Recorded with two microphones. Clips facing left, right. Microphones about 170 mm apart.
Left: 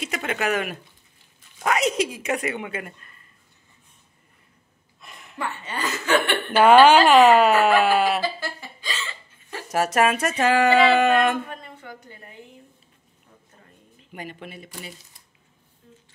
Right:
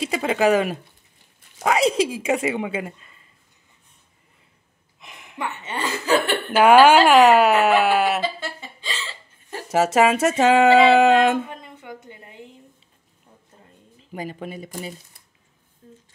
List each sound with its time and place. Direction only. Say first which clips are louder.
0.0 s speech: right 7 dB; 30° right (ahead or behind)
5.0 s chuckle: right 1 dB; 15° right (ahead or behind); by 6.5 s 40° right (ahead or behind)
6.5 s speech: right 1 dB; 10° right (ahead or behind)
8.2 s a sound: right 1 dB; 20° right (ahead or behind)
9.7 s speech: right 3 dB; 25° right (ahead or behind)
14.4 s speech: right 6 dB; 40° right (ahead or behind)